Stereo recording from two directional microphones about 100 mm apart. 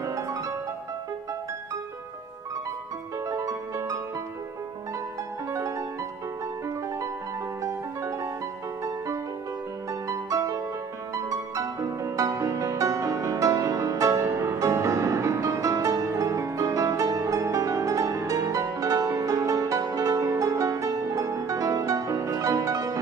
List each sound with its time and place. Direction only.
0.0 s music: 35° right (ahead or behind)
3.3 s music: 30° right (ahead or behind)
5.5 s music: 30° right (ahead or behind)
8.8 s music: 35° right (ahead or behind)